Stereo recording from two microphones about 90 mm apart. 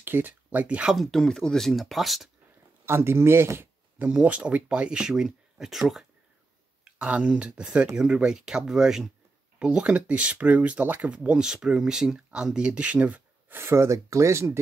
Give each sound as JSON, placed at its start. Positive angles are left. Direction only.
{"t": 0.0, "sound": "speech", "side_deg": -20}
{"t": 0.9, "sound": "speech", "side_deg": 5}
{"t": 2.8, "sound": "speech", "side_deg": -30}
{"t": 4.1, "sound": "speech", "side_deg": -10}